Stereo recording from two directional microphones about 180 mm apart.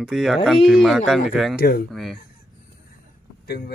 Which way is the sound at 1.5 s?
60° left (ahead or behind).